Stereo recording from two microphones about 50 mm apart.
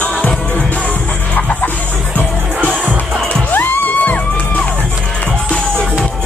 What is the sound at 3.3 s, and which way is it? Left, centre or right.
Music, left.